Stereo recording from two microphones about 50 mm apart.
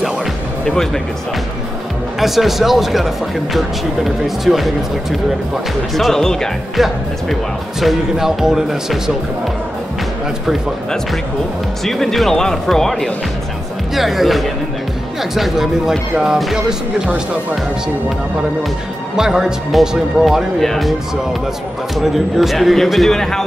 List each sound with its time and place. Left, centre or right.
0.7 s speech: centre
2.1 s a man's voice: centre
5.9 s speech: centre
6.8 s a man's voice: centre
11.8 s speech: centre
13.9 s a man's voice: centre
17.0 s speech: right
19.1 s speech: centre
20.5 s a man's voice: centre